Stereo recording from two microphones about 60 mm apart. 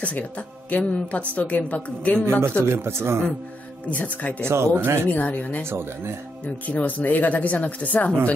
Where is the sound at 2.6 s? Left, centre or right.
Right.